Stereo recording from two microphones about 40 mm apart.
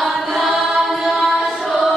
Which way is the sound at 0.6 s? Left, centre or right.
Centre.